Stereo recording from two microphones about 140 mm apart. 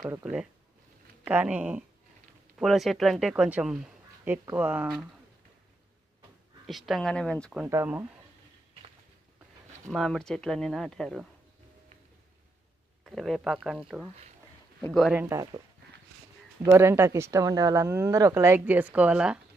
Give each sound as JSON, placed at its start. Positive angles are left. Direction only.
{"t": 0.2, "sound": "speech", "side_deg": -5}
{"t": 6.9, "sound": "speech", "side_deg": 5}
{"t": 7.6, "sound": "speech", "side_deg": -20}
{"t": 9.8, "sound": "speech", "side_deg": 5}
{"t": 13.0, "sound": "speech", "side_deg": 0}
{"t": 15.2, "sound": "speech", "side_deg": -25}
{"t": 16.6, "sound": "speech", "side_deg": -15}